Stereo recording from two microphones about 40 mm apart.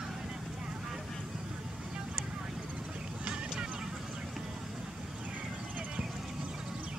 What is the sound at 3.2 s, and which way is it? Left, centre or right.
Honk, right.